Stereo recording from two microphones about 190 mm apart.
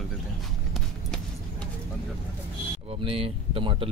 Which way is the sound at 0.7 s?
5° left (ahead or behind).